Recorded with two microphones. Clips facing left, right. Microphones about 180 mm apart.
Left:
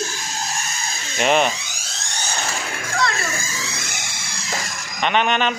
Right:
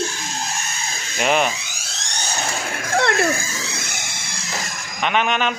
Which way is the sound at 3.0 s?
60° right (ahead or behind).